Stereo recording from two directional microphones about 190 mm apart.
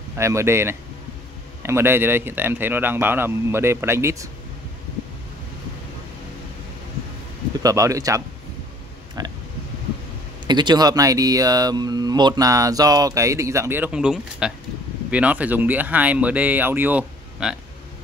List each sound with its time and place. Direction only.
0.2 s a man's voice: 15° right (ahead or behind)
7.6 s a man's voice: 15° right (ahead or behind)
10.4 s a man's voice: 25° right (ahead or behind); by 17.6 s 5° right (ahead or behind)